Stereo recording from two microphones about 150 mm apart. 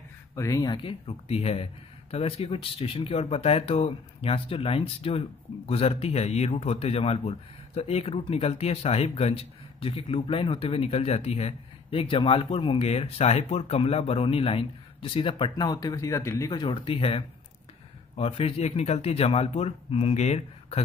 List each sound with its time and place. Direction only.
0.4 s speech: 25° left (ahead or behind); by 20.8 s 45° left (ahead or behind)